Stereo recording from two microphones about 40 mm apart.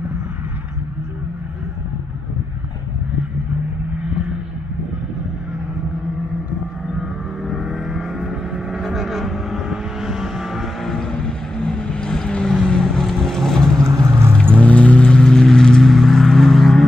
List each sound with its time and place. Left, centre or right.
7.6 s vehicle: centre
10.8 s vehicle: centre
12.6 s boat: centre
14.3 s vehicle: left
15.2 s vehicle: centre